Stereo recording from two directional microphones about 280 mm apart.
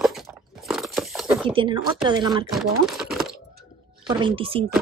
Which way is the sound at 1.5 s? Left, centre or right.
Centre.